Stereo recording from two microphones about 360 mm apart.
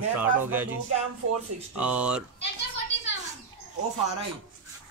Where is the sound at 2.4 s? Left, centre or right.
Left.